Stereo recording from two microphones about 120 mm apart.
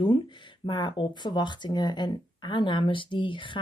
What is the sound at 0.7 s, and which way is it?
Speech, 40° left (ahead or behind).